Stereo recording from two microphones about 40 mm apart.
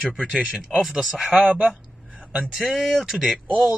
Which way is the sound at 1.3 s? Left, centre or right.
Right.